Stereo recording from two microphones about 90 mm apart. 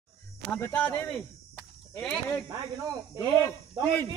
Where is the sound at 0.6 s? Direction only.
20° left (ahead or behind).